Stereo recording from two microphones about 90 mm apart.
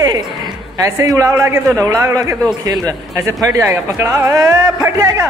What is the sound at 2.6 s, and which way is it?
A man's voice, 45° right (ahead or behind).